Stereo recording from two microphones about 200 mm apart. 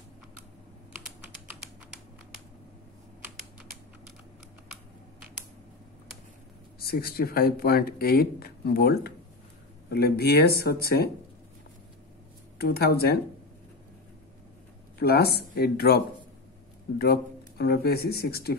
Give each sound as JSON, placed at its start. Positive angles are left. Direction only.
{"t": 6.8, "sound": "speech", "side_deg": 50}
{"t": 12.5, "sound": "speech", "side_deg": 50}
{"t": 15.0, "sound": "speech", "side_deg": 50}
{"t": 17.0, "sound": "speech", "side_deg": 50}